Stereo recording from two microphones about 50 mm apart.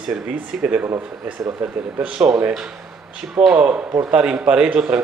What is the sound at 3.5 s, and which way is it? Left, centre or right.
Speech, centre.